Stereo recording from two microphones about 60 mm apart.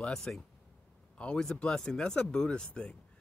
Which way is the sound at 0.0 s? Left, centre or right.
Centre.